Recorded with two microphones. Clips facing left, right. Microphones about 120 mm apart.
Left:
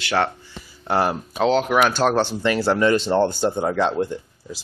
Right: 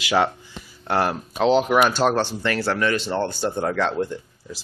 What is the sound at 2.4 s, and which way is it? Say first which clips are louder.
Speech: left 6 dB; 15° left (ahead or behind).